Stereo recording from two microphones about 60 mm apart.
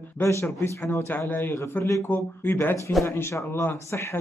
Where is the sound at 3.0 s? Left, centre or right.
Left.